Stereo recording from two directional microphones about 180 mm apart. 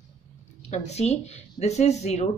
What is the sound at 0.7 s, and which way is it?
Speech, 35° left (ahead or behind).